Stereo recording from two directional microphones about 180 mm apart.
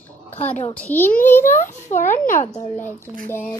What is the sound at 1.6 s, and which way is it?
Speech, 45° left (ahead or behind).